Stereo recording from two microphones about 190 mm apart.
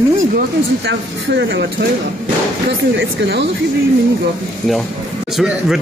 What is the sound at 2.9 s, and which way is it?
Speech, 65° right (ahead or behind).